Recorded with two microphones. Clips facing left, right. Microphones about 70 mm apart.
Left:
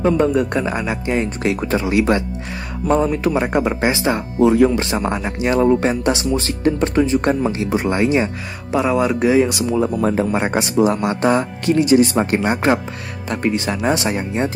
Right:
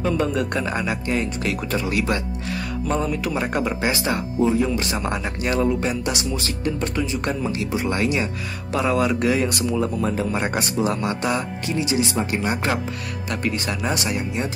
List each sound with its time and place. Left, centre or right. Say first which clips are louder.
0.3 s speech: left 5 dB; left
4.4 s speech: left 7 dB; left
4.6 s speech: left 6 dB; left
5.7 s speech: left 7 dB; left
11.6 s speech: left 12 dB; left
12.4 s speech: left 6 dB; left